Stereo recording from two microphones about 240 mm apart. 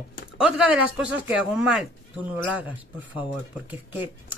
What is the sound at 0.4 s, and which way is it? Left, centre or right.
Speech, centre.